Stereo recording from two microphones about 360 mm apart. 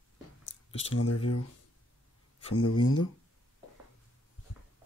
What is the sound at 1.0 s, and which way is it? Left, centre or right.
Speech, left.